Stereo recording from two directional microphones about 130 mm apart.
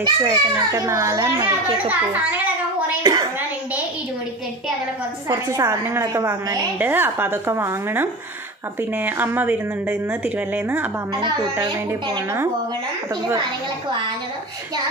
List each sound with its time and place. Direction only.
0.0 s a child's voice: 30° right (ahead or behind)
3.0 s a sound: 30° right (ahead or behind)
5.6 s a child's voice: 20° right (ahead or behind)
11.1 s speech: 35° right (ahead or behind)